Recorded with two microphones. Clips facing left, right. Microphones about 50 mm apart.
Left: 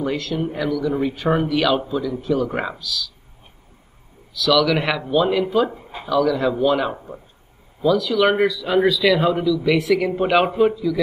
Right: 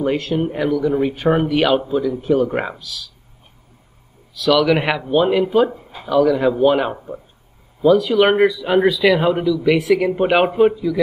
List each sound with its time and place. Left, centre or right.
0.0 s a man's voice: right
4.3 s a man's voice: right